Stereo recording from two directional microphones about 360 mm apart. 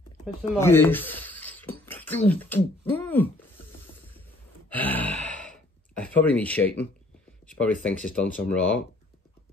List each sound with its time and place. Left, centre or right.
0.2 s speech: centre
4.6 s speech: centre